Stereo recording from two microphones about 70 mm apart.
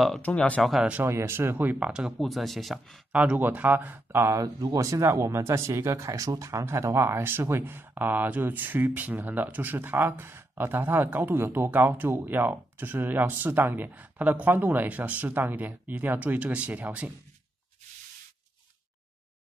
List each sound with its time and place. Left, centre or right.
0.2 s speech: centre
0.6 s speech: centre
1.0 s speech: right
1.9 s speech: centre
2.1 s speech: centre
3.1 s speech: centre; by 4.4 s right
4.4 s speech: right